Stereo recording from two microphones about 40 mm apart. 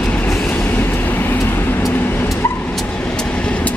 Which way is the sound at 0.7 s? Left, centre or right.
Left.